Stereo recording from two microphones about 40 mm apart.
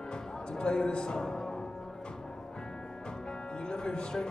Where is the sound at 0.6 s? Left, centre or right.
Left.